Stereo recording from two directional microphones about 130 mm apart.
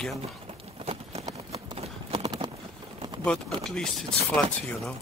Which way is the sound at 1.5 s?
50° right (ahead or behind).